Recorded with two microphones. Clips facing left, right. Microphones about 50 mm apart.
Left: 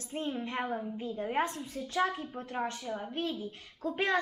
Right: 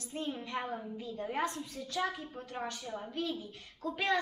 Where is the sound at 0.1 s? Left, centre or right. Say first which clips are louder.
Left 2 dB; left.